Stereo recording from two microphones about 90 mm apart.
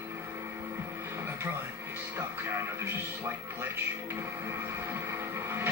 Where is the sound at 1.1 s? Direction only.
25° right (ahead or behind).